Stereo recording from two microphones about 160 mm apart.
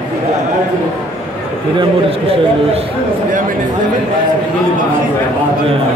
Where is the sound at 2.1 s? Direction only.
35° right (ahead or behind).